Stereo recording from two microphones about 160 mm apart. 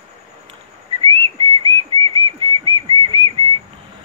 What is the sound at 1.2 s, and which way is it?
Whistling, 30° right (ahead or behind).